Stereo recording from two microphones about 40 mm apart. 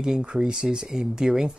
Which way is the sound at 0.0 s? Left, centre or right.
Centre.